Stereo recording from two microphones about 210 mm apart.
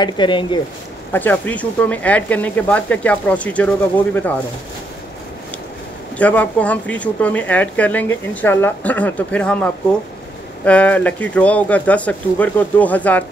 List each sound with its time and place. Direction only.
0.0 s speech: 20° left (ahead or behind)
1.1 s speech: 10° left (ahead or behind)
6.1 s speech: 5° left (ahead or behind)